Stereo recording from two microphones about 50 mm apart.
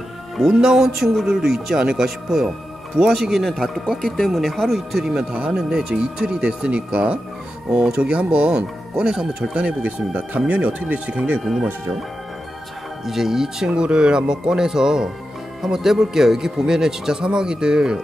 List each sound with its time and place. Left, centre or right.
0.4 s speech: centre
5.3 s speech: centre
13.0 s speech: centre
13.7 s speech: centre